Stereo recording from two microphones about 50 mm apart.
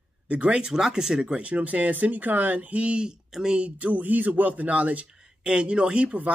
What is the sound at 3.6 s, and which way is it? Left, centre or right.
Speech, right.